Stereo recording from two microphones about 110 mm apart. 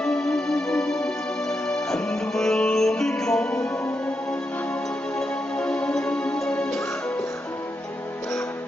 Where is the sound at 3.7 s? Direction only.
25° left (ahead or behind).